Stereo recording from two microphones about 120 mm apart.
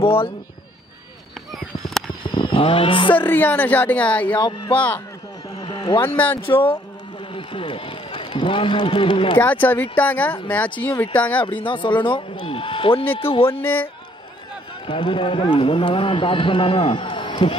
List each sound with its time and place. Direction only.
0.0 s speech: 50° left (ahead or behind)
2.3 s vehicle: 45° left (ahead or behind)
3.2 s speech: 15° left (ahead or behind)
4.4 s speech: 40° left (ahead or behind)
5.6 s a sound: 40° left (ahead or behind)
6.0 s speech: 15° left (ahead or behind)
6.4 s speech: 45° left (ahead or behind)
7.3 s run: 45° left (ahead or behind)
9.4 s speech: 15° left (ahead or behind)
11.6 s speech: 45° left (ahead or behind)
13.5 s speech: 15° left (ahead or behind)
14.9 s speech: 45° left (ahead or behind)